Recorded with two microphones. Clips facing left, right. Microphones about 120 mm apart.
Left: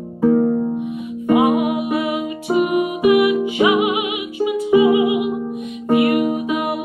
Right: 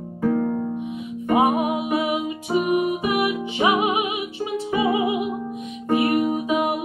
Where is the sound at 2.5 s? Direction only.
20° left (ahead or behind).